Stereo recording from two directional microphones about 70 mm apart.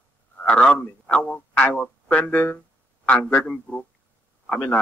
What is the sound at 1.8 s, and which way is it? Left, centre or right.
Speech, centre.